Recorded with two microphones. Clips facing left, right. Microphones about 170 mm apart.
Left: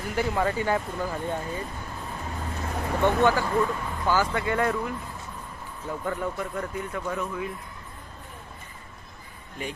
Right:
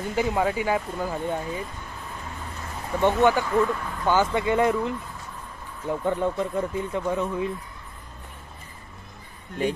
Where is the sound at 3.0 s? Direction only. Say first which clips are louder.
Right 2 dB; 20° right (ahead or behind).